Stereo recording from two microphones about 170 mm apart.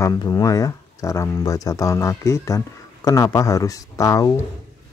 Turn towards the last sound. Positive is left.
turn(degrees=20)  # may be behind; listen again after turning